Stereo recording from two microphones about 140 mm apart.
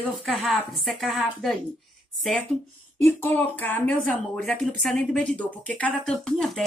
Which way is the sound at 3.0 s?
15° left (ahead or behind).